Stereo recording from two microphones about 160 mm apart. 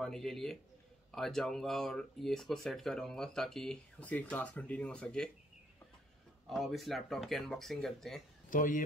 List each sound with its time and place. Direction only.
0.0 s speech: 5° left (ahead or behind)
6.5 s speech: centre (ahead or behind)
8.5 s speech: 55° left (ahead or behind)